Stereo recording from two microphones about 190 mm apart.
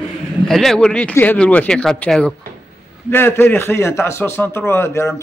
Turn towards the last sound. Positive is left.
turn(degrees=15)  # may be behind; listen again after turning